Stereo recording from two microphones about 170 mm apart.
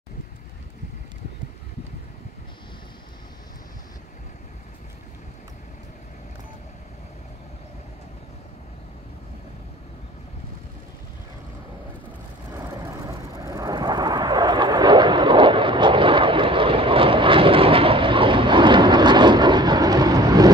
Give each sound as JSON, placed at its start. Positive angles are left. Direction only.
{"t": 13.0, "sound": "vehicle", "side_deg": -20}